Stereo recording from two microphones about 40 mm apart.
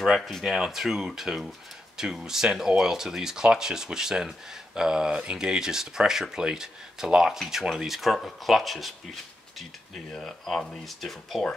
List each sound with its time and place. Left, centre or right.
0.3 s speech: centre